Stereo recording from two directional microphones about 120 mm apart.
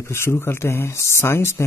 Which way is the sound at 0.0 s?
20° left (ahead or behind).